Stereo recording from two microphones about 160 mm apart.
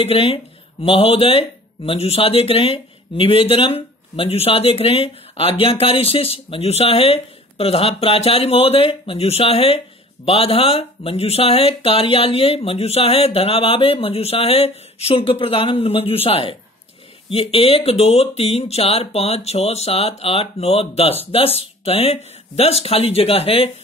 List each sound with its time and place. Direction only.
0.0 s speech: 35° left (ahead or behind)